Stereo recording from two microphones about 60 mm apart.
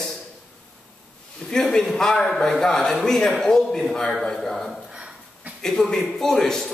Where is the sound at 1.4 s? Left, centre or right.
Centre.